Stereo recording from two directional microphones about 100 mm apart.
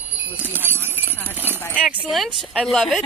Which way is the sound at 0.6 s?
20° left (ahead or behind).